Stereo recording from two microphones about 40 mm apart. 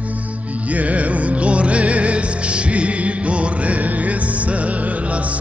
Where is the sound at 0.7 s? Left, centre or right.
Right.